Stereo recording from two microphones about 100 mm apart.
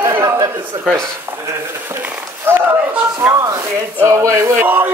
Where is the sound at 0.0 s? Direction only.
35° right (ahead or behind).